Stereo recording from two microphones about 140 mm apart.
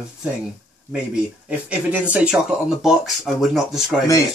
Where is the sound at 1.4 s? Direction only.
10° right (ahead or behind).